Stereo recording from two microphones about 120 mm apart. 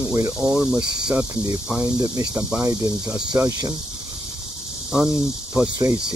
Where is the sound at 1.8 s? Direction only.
35° right (ahead or behind).